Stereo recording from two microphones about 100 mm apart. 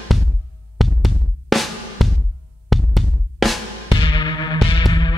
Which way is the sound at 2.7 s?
Centre (ahead or behind).